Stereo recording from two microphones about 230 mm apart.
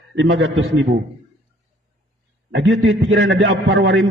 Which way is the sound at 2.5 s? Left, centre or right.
Right.